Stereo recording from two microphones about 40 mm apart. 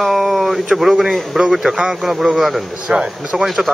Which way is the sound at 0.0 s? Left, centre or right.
Centre.